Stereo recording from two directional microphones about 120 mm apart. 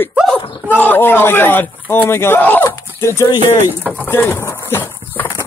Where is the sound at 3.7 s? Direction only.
20° right (ahead or behind).